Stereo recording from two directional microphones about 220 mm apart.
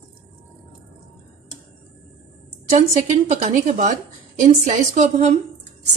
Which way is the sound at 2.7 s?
30° right (ahead or behind).